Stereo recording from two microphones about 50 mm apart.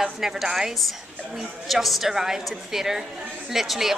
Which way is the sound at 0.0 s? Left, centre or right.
Centre.